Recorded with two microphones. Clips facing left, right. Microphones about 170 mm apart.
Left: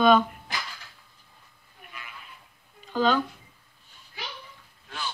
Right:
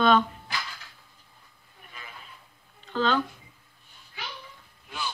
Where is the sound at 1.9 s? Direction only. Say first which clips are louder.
Left 1 dB; 30° right (ahead or behind).